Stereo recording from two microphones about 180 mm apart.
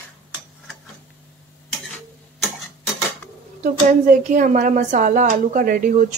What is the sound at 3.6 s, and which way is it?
A woman's voice, 45° right (ahead or behind).